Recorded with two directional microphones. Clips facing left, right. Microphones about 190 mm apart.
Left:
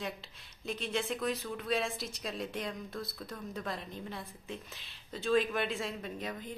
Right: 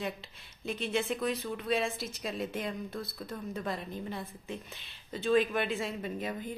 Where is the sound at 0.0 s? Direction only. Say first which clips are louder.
Right 3 dB; centre (ahead or behind).